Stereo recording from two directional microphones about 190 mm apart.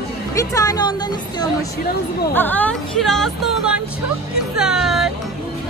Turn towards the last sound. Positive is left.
turn(degrees=0)  # may be behind; listen again after turning